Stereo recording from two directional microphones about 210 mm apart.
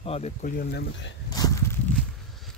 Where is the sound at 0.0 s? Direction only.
30° left (ahead or behind).